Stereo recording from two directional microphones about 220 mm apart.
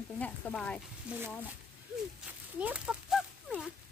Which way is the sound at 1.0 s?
10° right (ahead or behind).